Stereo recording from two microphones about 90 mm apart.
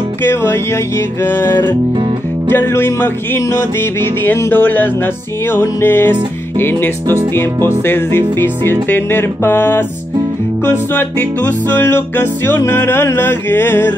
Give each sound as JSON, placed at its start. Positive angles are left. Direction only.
{"t": 0.2, "sound": "music", "side_deg": 25}